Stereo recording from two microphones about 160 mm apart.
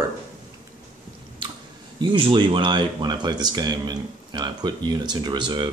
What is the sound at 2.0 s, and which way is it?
Speech, 30° right (ahead or behind).